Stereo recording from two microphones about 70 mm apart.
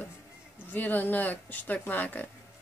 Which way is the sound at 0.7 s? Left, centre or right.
Left.